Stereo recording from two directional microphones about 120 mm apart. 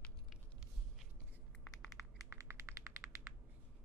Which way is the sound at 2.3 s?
25° right (ahead or behind).